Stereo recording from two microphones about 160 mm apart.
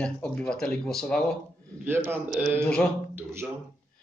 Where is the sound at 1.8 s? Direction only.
15° right (ahead or behind).